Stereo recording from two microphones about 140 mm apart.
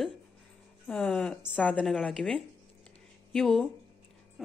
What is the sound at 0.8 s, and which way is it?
A woman's voice, 5° left (ahead or behind).